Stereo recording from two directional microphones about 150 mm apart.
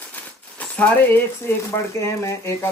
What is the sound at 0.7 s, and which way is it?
A man's voice, 10° left (ahead or behind).